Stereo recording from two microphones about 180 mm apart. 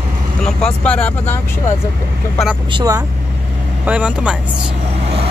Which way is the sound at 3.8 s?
10° right (ahead or behind).